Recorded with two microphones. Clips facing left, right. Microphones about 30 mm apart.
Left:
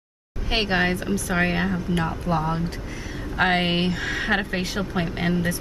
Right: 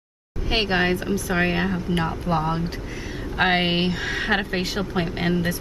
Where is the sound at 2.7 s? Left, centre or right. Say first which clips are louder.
Right 1 dB; centre.